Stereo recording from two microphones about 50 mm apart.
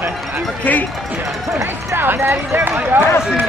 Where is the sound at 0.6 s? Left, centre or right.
Left.